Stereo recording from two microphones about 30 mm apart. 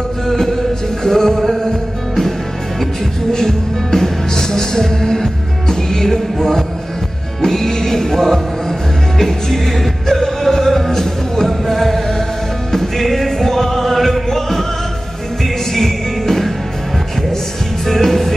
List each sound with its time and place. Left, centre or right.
0.3 s music: centre
3.3 s music: centre
7.4 s music: centre
10.0 s music: centre
15.7 s music: centre
17.8 s music: centre